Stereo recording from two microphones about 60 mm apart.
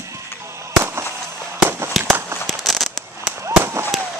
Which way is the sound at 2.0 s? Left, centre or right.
Centre.